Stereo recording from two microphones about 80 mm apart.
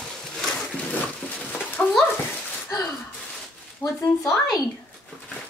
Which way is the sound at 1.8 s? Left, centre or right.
Centre.